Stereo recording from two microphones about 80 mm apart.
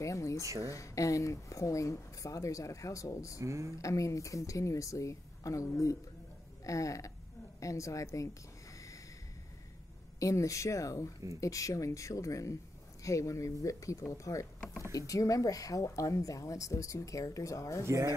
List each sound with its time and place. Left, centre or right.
0.0 s speech: left
3.3 s speech: right
3.7 s speech: left
8.7 s snort: left
10.2 s speech: left
17.8 s speech: right